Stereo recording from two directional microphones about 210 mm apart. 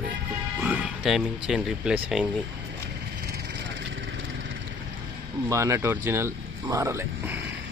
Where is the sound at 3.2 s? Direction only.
50° right (ahead or behind).